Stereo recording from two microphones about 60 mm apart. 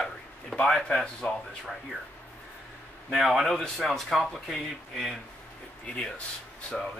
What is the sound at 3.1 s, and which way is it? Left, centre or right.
Speech, centre.